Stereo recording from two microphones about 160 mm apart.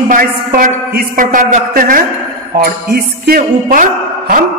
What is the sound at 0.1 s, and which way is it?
A man's voice, 60° right (ahead or behind).